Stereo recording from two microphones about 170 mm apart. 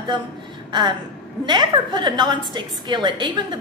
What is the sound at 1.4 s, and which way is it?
A woman's voice, 25° right (ahead or behind).